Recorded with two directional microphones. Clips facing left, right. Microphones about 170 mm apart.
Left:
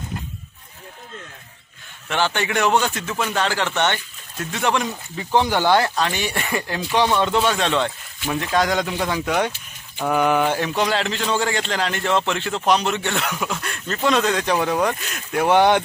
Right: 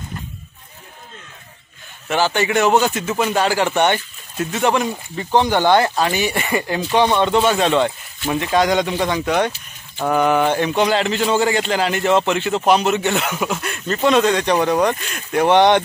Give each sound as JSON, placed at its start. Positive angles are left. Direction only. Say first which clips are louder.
{"t": 2.0, "sound": "a man's voice", "louder": "right 4 dB", "side_deg": -5}
{"t": 5.9, "sound": "a man's voice", "louder": "right 4 dB", "side_deg": -10}